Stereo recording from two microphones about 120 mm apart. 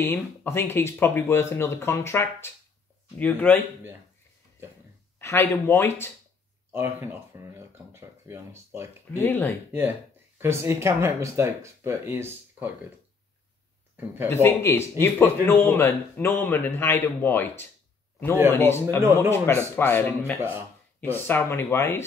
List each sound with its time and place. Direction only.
0.0 s speech: 20° left (ahead or behind)
5.2 s speech: 20° left (ahead or behind)
6.7 s speech: 20° right (ahead or behind)
9.2 s speech: 15° left (ahead or behind)
9.7 s speech: 15° right (ahead or behind)
13.9 s speech: 15° right (ahead or behind)
14.3 s speech: 20° left (ahead or behind)
18.9 s speech: 20° right (ahead or behind)
19.3 s speech: 20° left (ahead or behind)